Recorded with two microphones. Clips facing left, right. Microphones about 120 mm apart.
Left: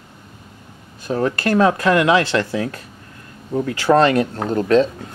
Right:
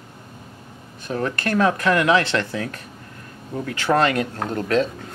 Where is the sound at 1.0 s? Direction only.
30° left (ahead or behind).